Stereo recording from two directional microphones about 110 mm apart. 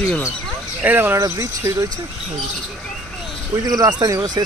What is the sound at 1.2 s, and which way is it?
Speech, 30° right (ahead or behind).